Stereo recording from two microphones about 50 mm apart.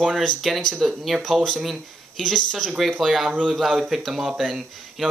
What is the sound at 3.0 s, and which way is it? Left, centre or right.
Speech, centre.